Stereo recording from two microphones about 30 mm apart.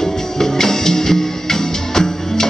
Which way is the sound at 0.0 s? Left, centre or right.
Centre.